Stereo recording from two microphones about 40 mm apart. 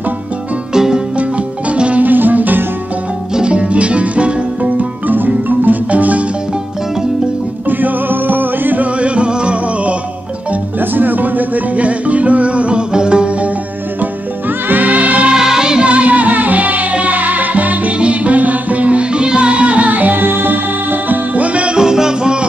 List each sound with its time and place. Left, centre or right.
0.7 s music: centre
1.7 s music: right
2.0 s music: right
3.3 s music: right
5.9 s marimba: right
7.6 s music: right
9.0 s music: right
10.8 s music: right
14.7 s music: right
15.3 s music: centre
15.8 s music: right
21.4 s music: right
21.7 s music: centre